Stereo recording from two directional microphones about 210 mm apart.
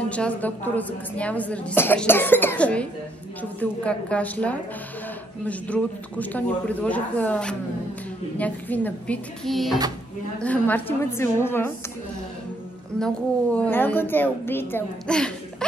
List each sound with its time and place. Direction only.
0.1 s a woman's voice: 5° left (ahead or behind)
13.0 s a woman's voice: 5° left (ahead or behind)